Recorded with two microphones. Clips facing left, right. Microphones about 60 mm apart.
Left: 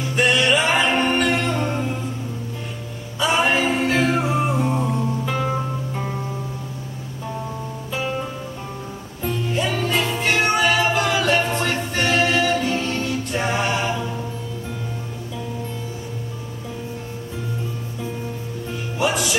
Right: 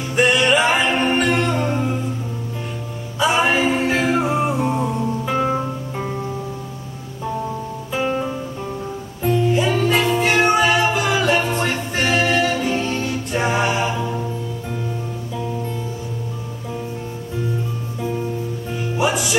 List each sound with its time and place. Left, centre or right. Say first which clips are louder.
0.0 s music: right 2 dB; centre
3.2 s a capella: right 2 dB; centre
7.9 s music: right 5 dB; centre
18.7 s music: right 2 dB; centre